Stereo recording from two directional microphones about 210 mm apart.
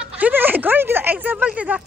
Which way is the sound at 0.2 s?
10° right (ahead or behind).